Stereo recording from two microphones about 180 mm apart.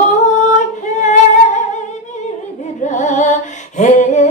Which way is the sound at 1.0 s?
40° left (ahead or behind).